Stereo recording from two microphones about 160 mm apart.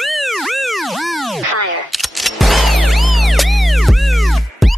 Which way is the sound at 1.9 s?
Centre (ahead or behind).